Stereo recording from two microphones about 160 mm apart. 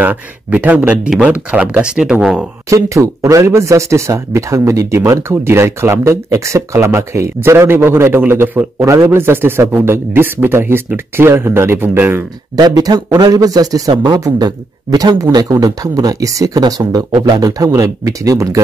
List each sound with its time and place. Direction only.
0.0 s speech: 10° right (ahead or behind)
2.7 s speech: 20° right (ahead or behind)